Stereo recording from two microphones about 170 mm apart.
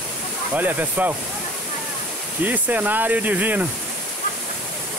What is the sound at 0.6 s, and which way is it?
Speech, 10° right (ahead or behind).